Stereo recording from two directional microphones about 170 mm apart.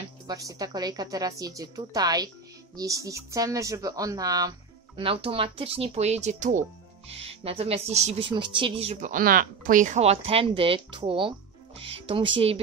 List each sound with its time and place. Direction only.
0.3 s a woman's voice: 20° right (ahead or behind); by 9.1 s 35° right (ahead or behind)
9.1 s speech: 55° right (ahead or behind); by 12.3 s 30° right (ahead or behind)